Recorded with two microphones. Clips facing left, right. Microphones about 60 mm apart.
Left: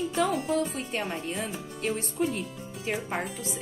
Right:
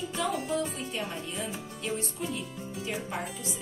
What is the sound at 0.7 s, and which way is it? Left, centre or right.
Speech, left.